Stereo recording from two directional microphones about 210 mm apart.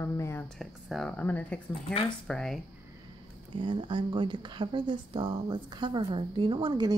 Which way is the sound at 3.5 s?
25° right (ahead or behind).